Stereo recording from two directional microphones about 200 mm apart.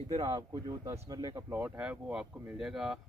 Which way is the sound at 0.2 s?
20° right (ahead or behind).